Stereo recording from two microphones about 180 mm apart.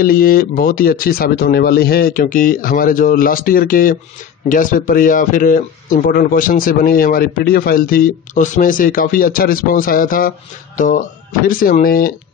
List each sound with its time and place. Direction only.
0.0 s speech: 50° left (ahead or behind)